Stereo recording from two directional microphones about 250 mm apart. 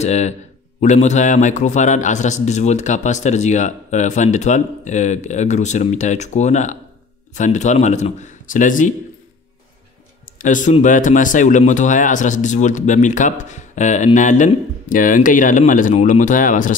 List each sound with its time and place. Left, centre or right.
0.0 s speech: left
10.4 s speech: left